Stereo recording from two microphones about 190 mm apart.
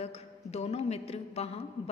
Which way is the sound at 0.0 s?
35° left (ahead or behind).